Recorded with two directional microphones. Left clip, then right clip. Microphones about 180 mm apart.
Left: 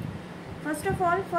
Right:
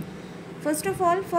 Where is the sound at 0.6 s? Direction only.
35° right (ahead or behind).